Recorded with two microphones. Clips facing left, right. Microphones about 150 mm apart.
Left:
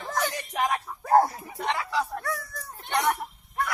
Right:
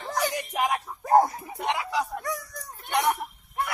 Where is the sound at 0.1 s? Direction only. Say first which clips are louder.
Right 2 dB; 15° right (ahead or behind).